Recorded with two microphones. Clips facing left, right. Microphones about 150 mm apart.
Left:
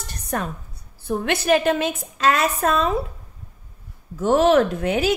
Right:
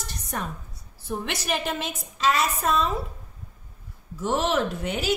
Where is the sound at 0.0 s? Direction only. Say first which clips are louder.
Left 6 dB; 60° left (ahead or behind).